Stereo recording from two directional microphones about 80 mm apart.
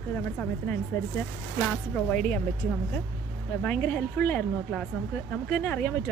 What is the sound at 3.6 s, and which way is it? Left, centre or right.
Speech, centre.